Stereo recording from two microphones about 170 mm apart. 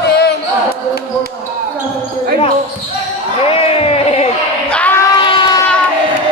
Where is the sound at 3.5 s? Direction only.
35° left (ahead or behind).